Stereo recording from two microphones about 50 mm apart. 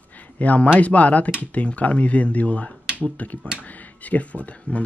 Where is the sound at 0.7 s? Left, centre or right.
Left.